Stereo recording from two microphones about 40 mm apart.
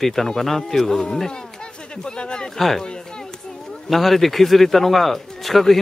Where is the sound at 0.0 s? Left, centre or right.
Centre; by 2.5 s left.